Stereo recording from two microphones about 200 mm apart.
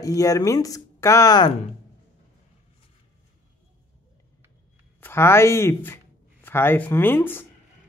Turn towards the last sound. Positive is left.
turn(degrees=10)  # may be behind; listen again after turning